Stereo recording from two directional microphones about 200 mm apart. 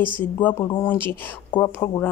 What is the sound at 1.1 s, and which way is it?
Speech, 10° left (ahead or behind).